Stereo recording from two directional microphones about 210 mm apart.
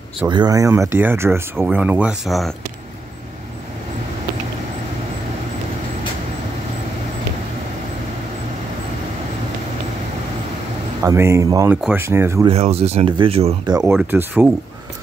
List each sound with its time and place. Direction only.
0.3 s speech: 20° right (ahead or behind); by 2.5 s centre (ahead or behind)
11.0 s speech: 15° right (ahead or behind)
12.4 s speech: 30° right (ahead or behind)
13.8 s speech: 5° right (ahead or behind)